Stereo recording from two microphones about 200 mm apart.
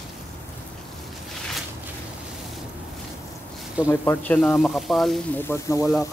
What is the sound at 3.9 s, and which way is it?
Speech, 10° left (ahead or behind).